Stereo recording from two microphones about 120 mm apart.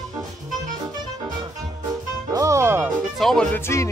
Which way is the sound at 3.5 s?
25° left (ahead or behind).